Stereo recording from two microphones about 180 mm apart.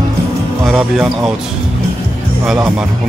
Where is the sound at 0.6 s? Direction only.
Centre (ahead or behind).